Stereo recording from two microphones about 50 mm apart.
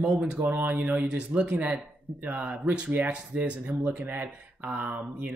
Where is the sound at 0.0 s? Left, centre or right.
Right.